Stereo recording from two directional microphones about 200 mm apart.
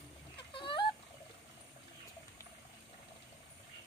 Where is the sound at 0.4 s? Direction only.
25° left (ahead or behind).